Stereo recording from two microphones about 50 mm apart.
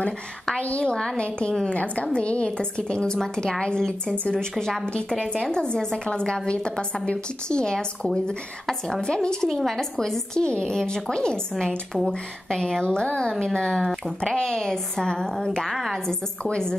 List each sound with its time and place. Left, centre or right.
0.6 s a woman's voice: left
9.5 s a woman's voice: centre
15.7 s a woman's voice: centre
16.4 s a woman's voice: centre